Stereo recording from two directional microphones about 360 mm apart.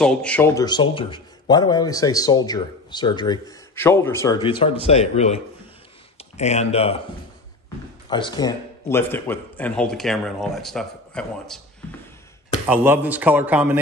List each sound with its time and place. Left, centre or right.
0.0 s a man's voice: centre
8.1 s a man's voice: centre
12.6 s a man's voice: centre